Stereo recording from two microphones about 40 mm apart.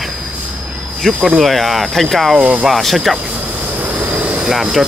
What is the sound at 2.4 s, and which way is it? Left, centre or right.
Speech, right.